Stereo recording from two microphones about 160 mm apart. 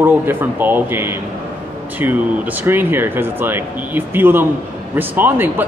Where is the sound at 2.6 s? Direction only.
15° right (ahead or behind).